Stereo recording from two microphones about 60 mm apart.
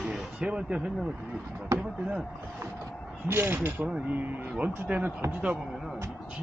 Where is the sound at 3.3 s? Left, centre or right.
Right.